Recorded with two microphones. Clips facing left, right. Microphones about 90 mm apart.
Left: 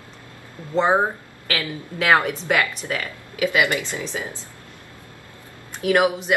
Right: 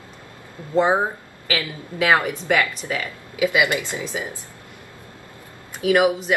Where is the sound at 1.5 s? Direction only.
5° right (ahead or behind).